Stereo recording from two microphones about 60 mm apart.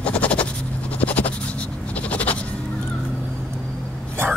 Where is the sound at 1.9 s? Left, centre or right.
Left.